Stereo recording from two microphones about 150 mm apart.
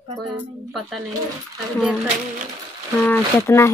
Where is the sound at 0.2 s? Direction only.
Centre (ahead or behind).